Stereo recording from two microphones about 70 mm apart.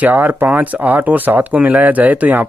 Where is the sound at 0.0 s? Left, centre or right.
Right.